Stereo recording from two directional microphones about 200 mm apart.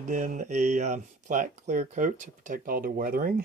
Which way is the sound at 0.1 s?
40° right (ahead or behind).